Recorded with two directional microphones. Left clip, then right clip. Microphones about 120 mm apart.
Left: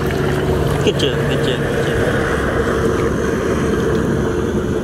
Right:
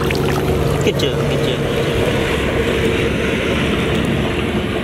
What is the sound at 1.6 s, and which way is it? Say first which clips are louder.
Vehicle: even; 30° right (ahead or behind).